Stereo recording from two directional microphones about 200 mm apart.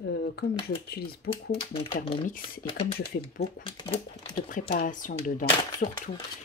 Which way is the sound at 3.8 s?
25° left (ahead or behind).